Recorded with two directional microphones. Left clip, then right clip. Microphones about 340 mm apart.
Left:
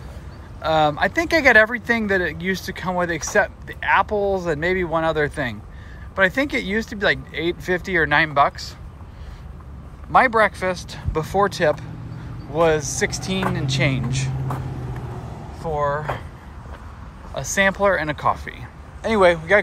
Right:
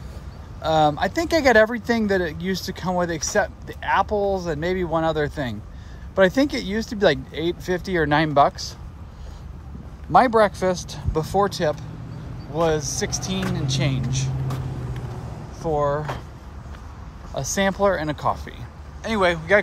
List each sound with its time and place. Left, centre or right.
0.6 s speech: centre
10.1 s speech: centre
15.6 s speech: centre
17.3 s speech: centre